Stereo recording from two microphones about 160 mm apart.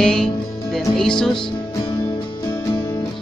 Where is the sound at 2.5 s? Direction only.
20° left (ahead or behind).